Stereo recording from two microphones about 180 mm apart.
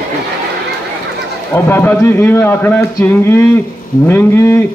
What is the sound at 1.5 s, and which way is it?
A man's voice, 10° left (ahead or behind).